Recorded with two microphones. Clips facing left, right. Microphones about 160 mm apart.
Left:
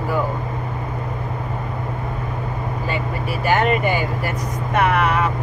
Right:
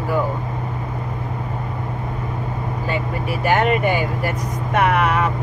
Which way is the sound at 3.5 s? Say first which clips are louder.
Even; 5° right (ahead or behind).